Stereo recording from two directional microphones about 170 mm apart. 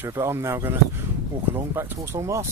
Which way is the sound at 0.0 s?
15° right (ahead or behind).